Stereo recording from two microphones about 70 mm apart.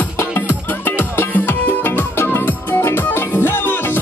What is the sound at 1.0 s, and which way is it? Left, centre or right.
Music, left.